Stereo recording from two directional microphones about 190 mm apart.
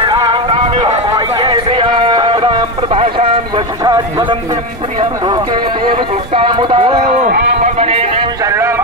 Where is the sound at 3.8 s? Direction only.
20° right (ahead or behind).